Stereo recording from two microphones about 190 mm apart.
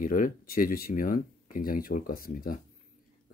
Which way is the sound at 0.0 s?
45° left (ahead or behind).